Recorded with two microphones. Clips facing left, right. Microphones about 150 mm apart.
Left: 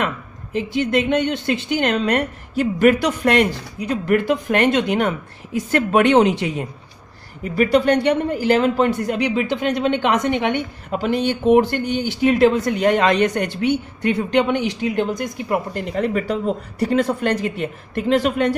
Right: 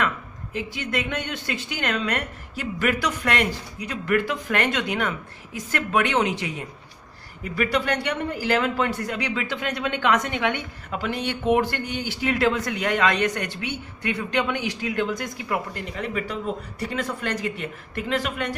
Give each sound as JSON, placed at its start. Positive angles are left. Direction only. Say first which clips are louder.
{"t": 0.6, "sound": "speech", "louder": "left 9 dB", "side_deg": 25}
{"t": 2.6, "sound": "speech", "louder": "left 10 dB", "side_deg": 40}
{"t": 3.3, "sound": "speech", "louder": "left 9 dB", "side_deg": 30}
{"t": 7.5, "sound": "speech", "louder": "left 8 dB", "side_deg": 25}
{"t": 15.4, "sound": "speech", "louder": "left 7 dB", "side_deg": 35}